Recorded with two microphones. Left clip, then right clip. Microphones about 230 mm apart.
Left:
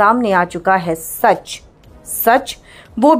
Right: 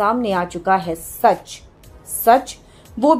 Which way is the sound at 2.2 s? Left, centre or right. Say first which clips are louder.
Left 1 dB; left.